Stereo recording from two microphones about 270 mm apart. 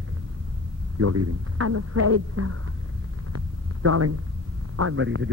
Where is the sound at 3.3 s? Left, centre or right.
Right.